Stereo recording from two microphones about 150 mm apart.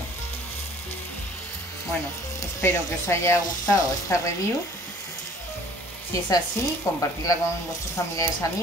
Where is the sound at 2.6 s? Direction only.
20° left (ahead or behind).